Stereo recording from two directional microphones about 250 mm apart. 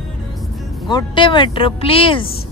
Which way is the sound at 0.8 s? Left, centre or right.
Centre.